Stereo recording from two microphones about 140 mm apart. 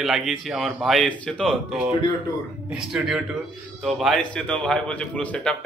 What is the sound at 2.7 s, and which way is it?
A man's voice, 5° right (ahead or behind).